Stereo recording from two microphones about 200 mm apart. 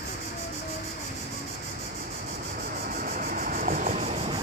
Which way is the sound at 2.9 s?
45° right (ahead or behind).